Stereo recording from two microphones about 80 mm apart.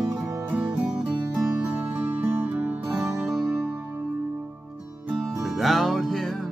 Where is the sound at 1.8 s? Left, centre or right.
Right.